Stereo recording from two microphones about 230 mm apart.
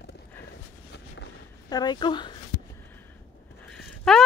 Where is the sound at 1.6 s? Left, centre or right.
Centre.